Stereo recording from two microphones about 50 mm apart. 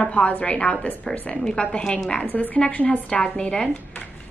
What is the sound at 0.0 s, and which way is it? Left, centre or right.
A woman's voice, left.